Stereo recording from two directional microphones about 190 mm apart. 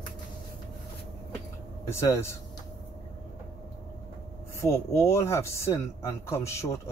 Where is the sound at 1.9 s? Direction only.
15° left (ahead or behind).